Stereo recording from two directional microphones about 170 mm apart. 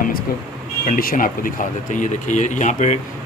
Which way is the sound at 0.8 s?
55° left (ahead or behind).